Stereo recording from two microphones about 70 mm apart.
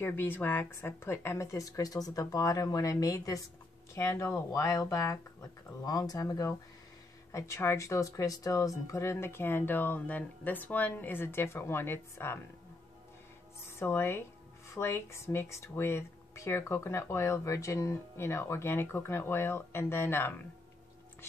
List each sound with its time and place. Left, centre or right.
0.0 s speech: left
3.9 s speech: left
7.3 s speech: left
13.7 s speech: left